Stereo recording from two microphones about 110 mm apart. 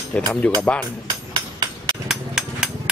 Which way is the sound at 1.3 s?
40° right (ahead or behind).